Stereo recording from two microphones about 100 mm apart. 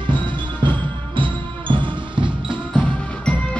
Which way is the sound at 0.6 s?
55° right (ahead or behind).